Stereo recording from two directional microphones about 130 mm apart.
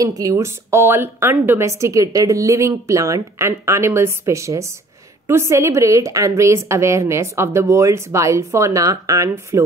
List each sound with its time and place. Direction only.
0.0 s a woman's voice: 25° right (ahead or behind)